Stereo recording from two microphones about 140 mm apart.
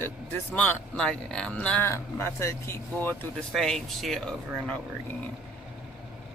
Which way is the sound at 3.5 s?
5° left (ahead or behind).